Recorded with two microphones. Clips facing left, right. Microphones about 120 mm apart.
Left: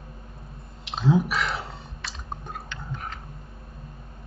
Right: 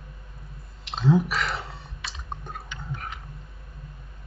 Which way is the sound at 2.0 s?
Centre (ahead or behind).